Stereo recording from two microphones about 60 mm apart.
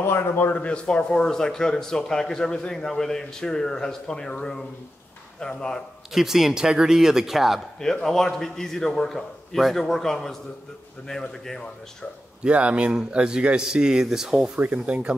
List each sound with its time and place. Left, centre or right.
0.0 s a man's voice: left
0.7 s speech: centre
6.1 s speech: centre
7.8 s speech: centre
12.4 s speech: centre
14.6 s speech: right